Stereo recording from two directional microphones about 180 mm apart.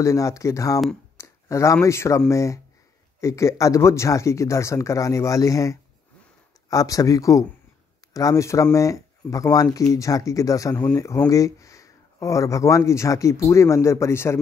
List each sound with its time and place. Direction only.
0.0 s speech: 15° left (ahead or behind)